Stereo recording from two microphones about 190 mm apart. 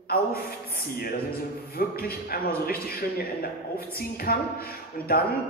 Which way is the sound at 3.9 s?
55° left (ahead or behind).